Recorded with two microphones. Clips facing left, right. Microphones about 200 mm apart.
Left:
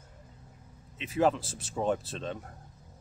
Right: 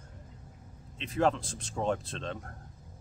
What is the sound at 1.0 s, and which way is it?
Speech, 5° left (ahead or behind).